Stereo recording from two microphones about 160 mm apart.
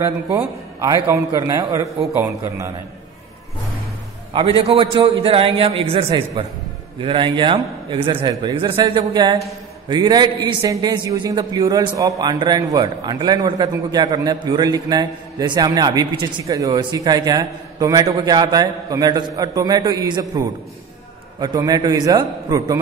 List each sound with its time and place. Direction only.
0.7 s a man's voice: 20° right (ahead or behind)
4.3 s a man's voice: 35° right (ahead or behind)